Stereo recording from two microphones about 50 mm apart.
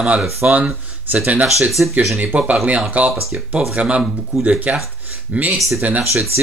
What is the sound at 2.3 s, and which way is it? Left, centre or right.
Speech, right.